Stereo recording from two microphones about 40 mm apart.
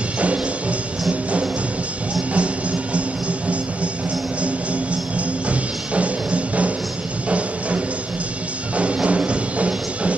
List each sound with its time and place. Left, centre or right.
0.2 s music: right
2.3 s music: right
5.5 s music: right